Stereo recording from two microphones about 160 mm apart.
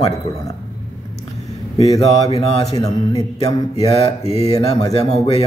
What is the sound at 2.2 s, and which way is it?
Mantra, 40° left (ahead or behind).